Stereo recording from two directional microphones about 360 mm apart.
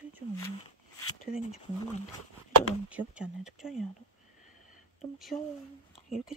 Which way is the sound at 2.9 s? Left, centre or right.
Centre.